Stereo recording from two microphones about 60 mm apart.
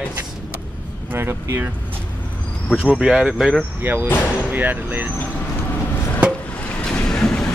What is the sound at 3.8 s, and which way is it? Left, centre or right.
Speech, right.